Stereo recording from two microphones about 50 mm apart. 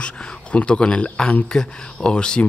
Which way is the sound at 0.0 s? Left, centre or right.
Left.